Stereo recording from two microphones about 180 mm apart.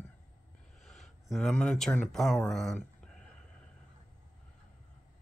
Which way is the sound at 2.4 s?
5° left (ahead or behind).